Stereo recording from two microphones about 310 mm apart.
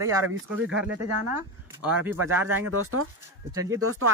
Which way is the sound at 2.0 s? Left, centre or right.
Centre.